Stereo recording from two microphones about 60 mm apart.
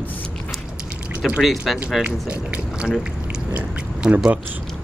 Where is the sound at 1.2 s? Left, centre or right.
Centre.